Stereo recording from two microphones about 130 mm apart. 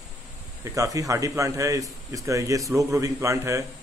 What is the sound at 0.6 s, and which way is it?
Speech, 25° right (ahead or behind).